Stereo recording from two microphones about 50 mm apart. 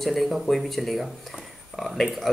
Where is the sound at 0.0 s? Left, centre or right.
Centre.